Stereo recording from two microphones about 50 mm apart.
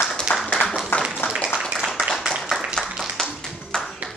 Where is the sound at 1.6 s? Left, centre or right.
Centre.